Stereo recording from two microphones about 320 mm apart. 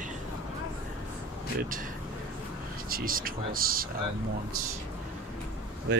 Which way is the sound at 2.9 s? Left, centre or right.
Right.